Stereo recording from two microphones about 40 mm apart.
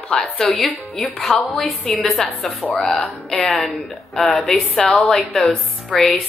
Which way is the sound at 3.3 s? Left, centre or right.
Centre.